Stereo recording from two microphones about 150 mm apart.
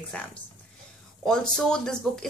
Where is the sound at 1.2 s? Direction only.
5° left (ahead or behind).